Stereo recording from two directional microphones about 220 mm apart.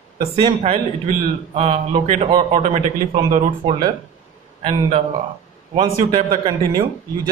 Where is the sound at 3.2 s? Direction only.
35° right (ahead or behind).